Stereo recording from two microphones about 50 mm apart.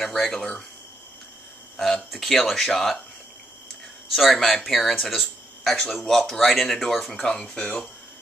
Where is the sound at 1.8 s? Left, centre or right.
Centre.